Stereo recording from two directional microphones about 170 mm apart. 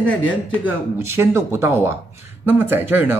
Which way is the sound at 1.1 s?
15° right (ahead or behind).